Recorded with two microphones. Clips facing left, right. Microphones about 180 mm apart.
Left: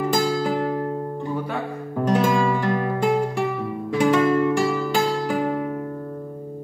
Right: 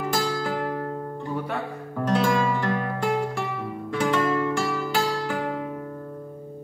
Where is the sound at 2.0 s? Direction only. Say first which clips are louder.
Left 3 dB; 15° left (ahead or behind).